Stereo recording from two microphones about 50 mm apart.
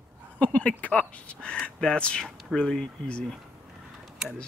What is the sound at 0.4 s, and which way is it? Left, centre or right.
Speech, left.